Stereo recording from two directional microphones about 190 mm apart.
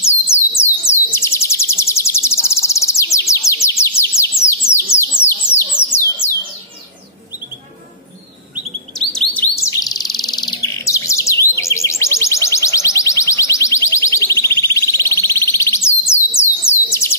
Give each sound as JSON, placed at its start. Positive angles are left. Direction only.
{"t": 0.0, "sound": "bird", "side_deg": 15}
{"t": 5.8, "sound": "a sound", "side_deg": 10}
{"t": 8.9, "sound": "chirp", "side_deg": 5}
{"t": 16.1, "sound": "bird", "side_deg": 15}